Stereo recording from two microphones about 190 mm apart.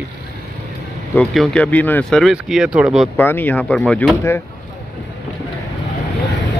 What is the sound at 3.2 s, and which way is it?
Speech, 10° left (ahead or behind).